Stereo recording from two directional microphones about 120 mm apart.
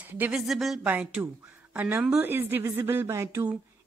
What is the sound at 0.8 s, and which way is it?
Speech, 10° right (ahead or behind).